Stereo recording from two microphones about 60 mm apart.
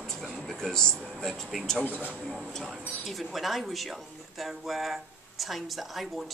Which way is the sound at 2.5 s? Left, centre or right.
Centre.